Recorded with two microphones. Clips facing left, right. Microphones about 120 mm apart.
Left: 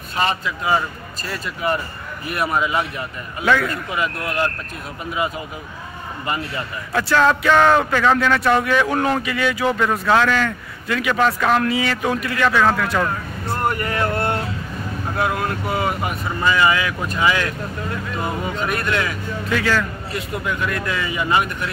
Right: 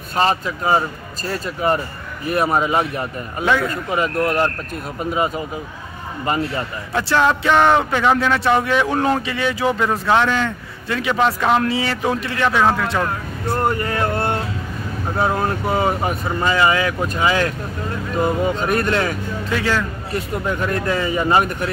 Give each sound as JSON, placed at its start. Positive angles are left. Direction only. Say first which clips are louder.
{"t": 0.1, "sound": "speech", "louder": "right 3 dB", "side_deg": -35}
{"t": 3.4, "sound": "a man's voice", "louder": "even", "side_deg": -20}
{"t": 3.9, "sound": "speech", "louder": "right 8 dB", "side_deg": -40}
{"t": 6.2, "sound": "speech", "louder": "right 5 dB", "side_deg": -35}
{"t": 7.0, "sound": "a man's voice", "louder": "even", "side_deg": -20}
{"t": 20.1, "sound": "speech", "louder": "right 3 dB", "side_deg": -40}